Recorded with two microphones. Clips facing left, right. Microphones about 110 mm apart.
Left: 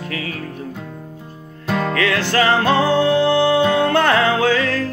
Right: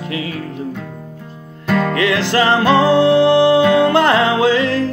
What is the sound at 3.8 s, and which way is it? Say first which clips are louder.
Music: right 3 dB; 15° right (ahead or behind).